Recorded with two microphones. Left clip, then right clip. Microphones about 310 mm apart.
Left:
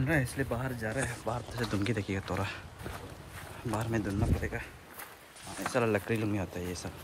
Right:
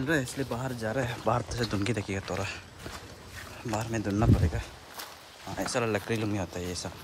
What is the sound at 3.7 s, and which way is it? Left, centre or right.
Speech, centre.